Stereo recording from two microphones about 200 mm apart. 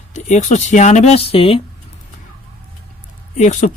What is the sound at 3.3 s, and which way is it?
Speech, 35° left (ahead or behind).